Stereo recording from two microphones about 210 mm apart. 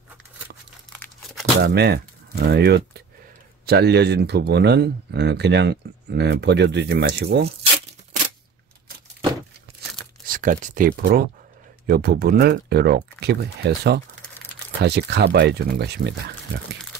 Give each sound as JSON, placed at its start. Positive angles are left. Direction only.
{"t": 0.9, "sound": "crumpling", "side_deg": 10}
{"t": 1.6, "sound": "speech", "side_deg": -50}
{"t": 10.2, "sound": "speech", "side_deg": -40}